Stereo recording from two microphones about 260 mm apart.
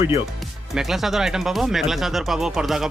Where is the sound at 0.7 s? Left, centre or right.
Centre.